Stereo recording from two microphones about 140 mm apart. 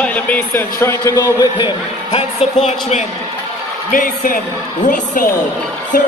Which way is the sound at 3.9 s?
80° left.